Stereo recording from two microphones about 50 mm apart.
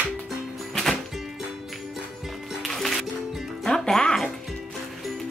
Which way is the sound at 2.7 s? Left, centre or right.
Centre.